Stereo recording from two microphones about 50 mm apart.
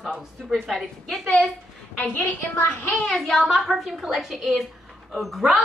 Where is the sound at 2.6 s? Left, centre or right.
Left.